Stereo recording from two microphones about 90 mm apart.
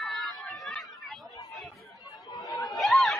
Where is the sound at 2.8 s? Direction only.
Centre (ahead or behind).